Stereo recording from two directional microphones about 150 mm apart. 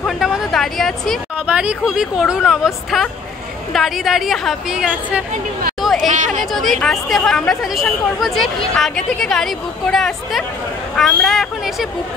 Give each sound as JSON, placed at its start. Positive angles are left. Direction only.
{"t": 0.0, "sound": "a sound", "side_deg": 0}
{"t": 1.4, "sound": "speech", "side_deg": -10}
{"t": 5.8, "sound": "chatter", "side_deg": 0}
{"t": 6.0, "sound": "speech", "side_deg": -55}
{"t": 6.5, "sound": "speech", "side_deg": 0}